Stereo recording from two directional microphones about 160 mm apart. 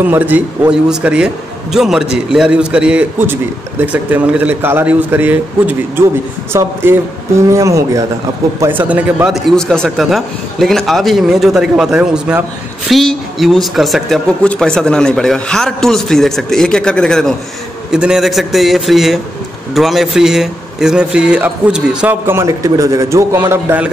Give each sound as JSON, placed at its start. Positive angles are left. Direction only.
{"t": 0.0, "sound": "a man's voice", "side_deg": -10}